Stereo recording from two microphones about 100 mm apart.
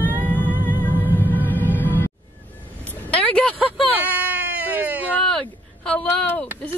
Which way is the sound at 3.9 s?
15° right (ahead or behind).